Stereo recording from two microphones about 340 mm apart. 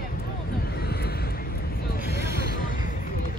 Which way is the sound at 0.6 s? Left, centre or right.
Left.